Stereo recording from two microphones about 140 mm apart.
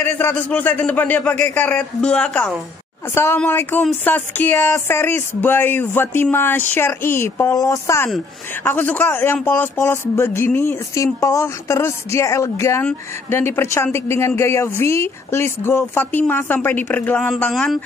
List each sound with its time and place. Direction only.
0.0 s a man's voice: 15° left (ahead or behind)